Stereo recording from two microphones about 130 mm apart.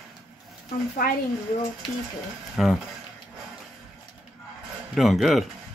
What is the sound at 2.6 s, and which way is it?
Speech, 5° right (ahead or behind).